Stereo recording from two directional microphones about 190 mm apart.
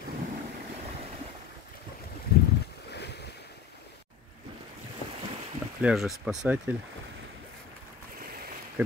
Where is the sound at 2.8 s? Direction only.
65° left (ahead or behind).